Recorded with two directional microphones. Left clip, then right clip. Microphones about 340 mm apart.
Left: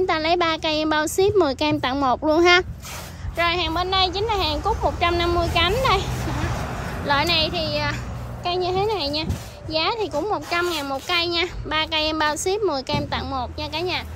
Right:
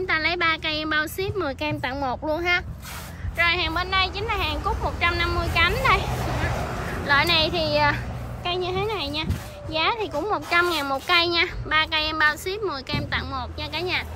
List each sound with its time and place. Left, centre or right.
0.0 s a child's voice: centre
3.3 s a child's voice: centre
6.4 s a sound: right
7.1 s a child's voice: centre